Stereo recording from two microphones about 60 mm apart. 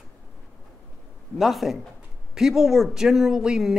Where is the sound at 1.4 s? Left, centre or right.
Centre.